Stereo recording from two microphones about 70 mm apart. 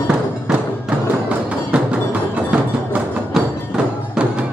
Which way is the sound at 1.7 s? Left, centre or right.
Centre.